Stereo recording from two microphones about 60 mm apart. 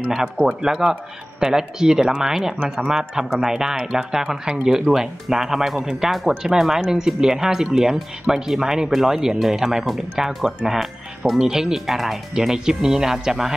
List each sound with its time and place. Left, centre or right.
0.1 s speech: centre